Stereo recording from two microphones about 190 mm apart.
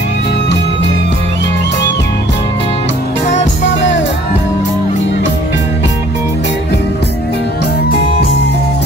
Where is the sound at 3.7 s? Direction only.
70° left (ahead or behind).